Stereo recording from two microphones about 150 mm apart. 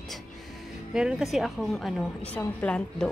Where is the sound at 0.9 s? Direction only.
5° right (ahead or behind).